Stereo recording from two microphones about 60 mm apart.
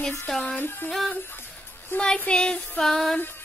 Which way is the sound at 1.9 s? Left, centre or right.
Left.